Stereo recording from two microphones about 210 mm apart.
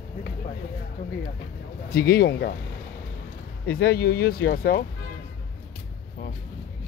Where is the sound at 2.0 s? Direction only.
45° left (ahead or behind).